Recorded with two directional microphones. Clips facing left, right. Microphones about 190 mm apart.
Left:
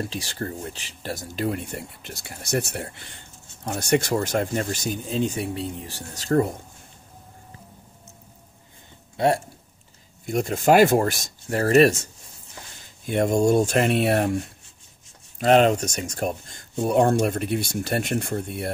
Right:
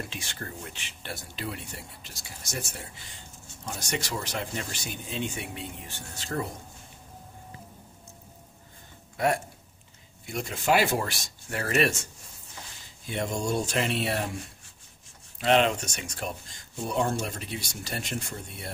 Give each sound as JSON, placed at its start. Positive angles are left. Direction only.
{"t": 0.0, "sound": "speech", "side_deg": 35}
{"t": 9.1, "sound": "speech", "side_deg": 30}
{"t": 10.2, "sound": "speech", "side_deg": 45}
{"t": 13.0, "sound": "speech", "side_deg": 50}
{"t": 15.3, "sound": "speech", "side_deg": 45}
{"t": 16.7, "sound": "speech", "side_deg": 55}